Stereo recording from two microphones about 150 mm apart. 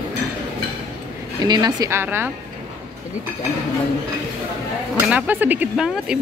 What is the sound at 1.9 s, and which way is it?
Speech, 15° right (ahead or behind).